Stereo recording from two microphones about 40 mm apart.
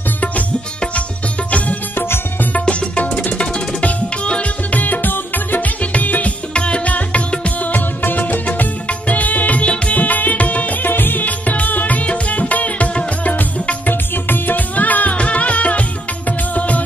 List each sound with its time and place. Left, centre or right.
2.6 s music: left
3.8 s tabla: left
4.7 s music: left
5.8 s music: left
6.5 s music: left
7.7 s music of bollywood: left
8.8 s music: left
10.9 s music: left
14.1 s music: left
16.3 s music of bollywood: left